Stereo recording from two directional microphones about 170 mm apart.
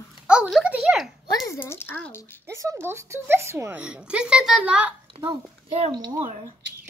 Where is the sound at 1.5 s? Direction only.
15° left (ahead or behind).